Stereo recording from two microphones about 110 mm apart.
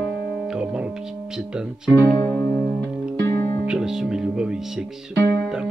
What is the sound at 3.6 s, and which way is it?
Speech, 5° right (ahead or behind).